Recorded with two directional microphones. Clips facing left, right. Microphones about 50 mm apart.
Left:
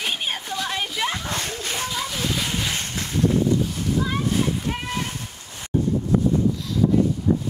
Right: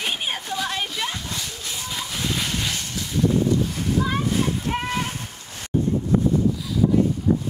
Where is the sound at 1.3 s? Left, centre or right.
Left.